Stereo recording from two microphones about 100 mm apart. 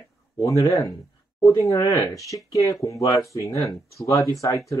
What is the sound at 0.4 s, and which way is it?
Speech, 30° left (ahead or behind).